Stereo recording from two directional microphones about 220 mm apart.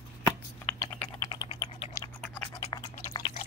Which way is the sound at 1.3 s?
20° left (ahead or behind).